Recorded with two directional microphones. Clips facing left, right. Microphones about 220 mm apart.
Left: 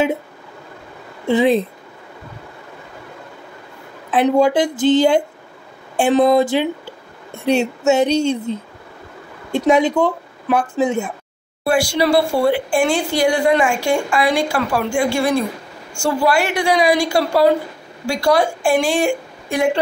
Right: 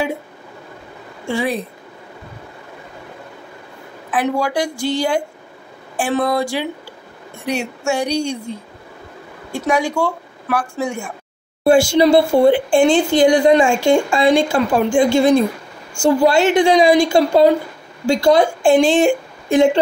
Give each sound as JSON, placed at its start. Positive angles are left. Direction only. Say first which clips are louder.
{"t": 1.2, "sound": "speech", "louder": "left 6 dB", "side_deg": 20}
{"t": 4.1, "sound": "a woman's voice", "louder": "left 5 dB", "side_deg": 25}
{"t": 11.6, "sound": "a woman's voice", "louder": "right 5 dB", "side_deg": -25}